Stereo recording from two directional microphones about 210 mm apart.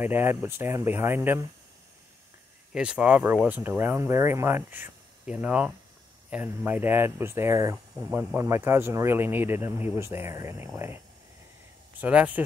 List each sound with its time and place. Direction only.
0.0 s speech: 10° right (ahead or behind)
2.7 s speech: 5° right (ahead or behind)
12.0 s speech: 5° right (ahead or behind)